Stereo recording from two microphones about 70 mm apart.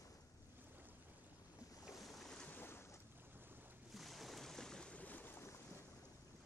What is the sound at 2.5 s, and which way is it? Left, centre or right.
Boat, left.